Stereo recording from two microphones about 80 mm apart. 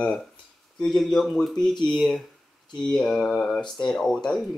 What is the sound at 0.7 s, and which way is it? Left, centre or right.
Speech, centre.